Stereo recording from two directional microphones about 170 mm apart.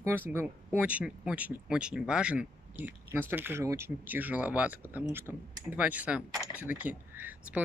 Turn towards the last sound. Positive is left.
turn(degrees=-10)  # may be behind; listen again after turning